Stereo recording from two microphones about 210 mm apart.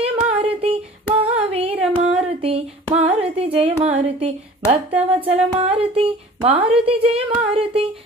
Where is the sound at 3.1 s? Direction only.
25° right (ahead or behind).